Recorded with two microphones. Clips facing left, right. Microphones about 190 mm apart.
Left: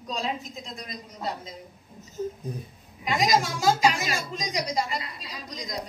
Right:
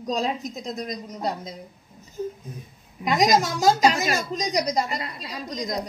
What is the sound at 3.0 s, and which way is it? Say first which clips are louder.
A woman's voice: right 4 dB; 40° right (ahead or behind).